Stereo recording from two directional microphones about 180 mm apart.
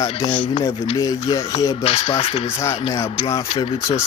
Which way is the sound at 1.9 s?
30° left (ahead or behind).